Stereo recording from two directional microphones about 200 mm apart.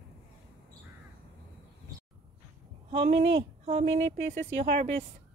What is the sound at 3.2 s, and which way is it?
Speech, 60° right (ahead or behind).